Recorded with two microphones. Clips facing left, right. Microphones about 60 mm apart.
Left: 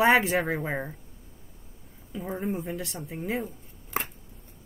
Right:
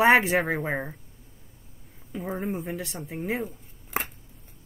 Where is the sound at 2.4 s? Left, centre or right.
Centre.